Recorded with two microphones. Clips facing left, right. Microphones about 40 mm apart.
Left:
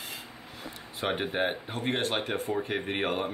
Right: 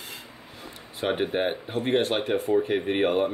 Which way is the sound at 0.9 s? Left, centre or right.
Centre.